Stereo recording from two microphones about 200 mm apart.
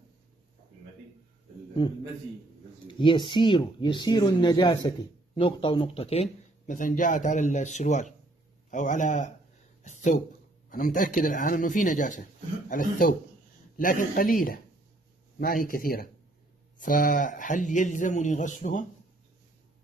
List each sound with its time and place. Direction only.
2.9 s speech: 25° left (ahead or behind)
6.6 s speech: 40° left (ahead or behind)
10.7 s speech: 45° left (ahead or behind)